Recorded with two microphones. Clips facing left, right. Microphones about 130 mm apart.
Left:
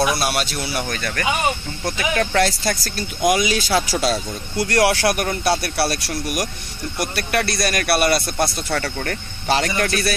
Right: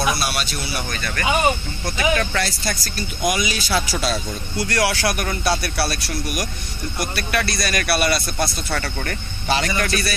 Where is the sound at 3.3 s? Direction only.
90° left.